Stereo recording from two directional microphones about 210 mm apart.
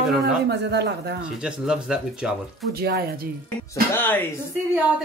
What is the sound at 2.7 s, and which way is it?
Speech, 50° right (ahead or behind).